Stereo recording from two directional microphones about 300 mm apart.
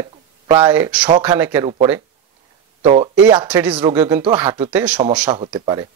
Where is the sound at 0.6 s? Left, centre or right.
Centre.